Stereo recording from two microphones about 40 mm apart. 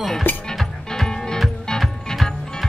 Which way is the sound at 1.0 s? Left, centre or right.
Centre.